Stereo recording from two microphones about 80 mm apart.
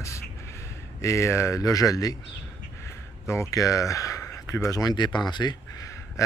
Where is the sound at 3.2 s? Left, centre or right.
Left.